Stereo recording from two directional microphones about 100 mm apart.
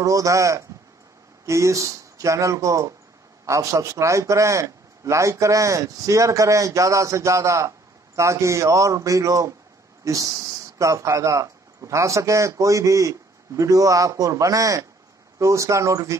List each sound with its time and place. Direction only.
0.0 s speech: 35° right (ahead or behind)